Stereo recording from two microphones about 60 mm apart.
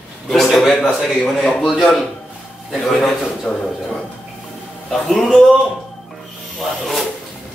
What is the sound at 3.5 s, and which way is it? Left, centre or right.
Speech, left.